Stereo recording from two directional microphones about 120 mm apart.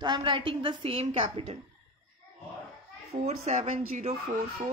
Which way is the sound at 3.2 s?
70° right (ahead or behind).